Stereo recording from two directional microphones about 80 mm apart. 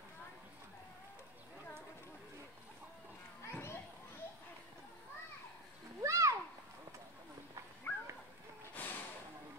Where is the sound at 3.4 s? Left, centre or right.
Left.